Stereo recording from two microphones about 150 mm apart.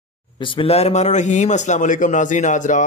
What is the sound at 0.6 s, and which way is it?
Speech, 45° left (ahead or behind).